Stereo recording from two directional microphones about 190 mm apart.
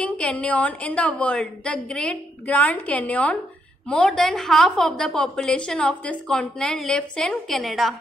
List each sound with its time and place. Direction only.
0.0 s a woman's voice: 5° left (ahead or behind)